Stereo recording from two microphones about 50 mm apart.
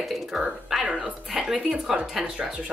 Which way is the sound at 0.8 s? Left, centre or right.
Right.